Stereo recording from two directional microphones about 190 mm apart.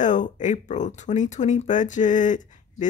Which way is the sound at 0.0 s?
40° left (ahead or behind).